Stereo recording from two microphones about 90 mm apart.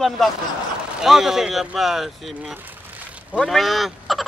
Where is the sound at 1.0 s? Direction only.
5° right (ahead or behind).